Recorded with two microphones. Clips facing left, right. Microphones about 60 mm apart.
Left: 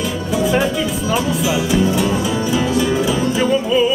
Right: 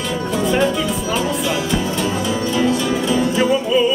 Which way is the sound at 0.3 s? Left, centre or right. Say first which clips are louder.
Left 1 dB; centre.